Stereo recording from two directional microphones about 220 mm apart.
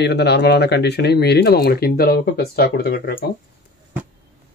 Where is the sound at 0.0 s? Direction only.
50° left (ahead or behind).